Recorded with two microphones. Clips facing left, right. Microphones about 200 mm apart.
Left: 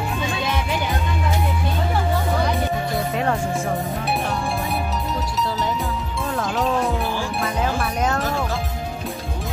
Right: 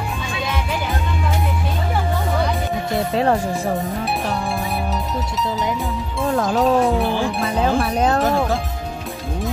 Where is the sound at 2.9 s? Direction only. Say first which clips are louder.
Right 8 dB; 30° right (ahead or behind).